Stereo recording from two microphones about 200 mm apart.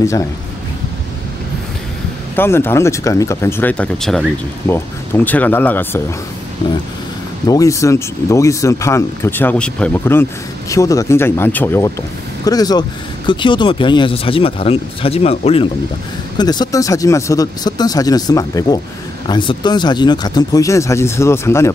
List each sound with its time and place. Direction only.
2.3 s speech: 10° left (ahead or behind)
7.4 s speech: 15° left (ahead or behind)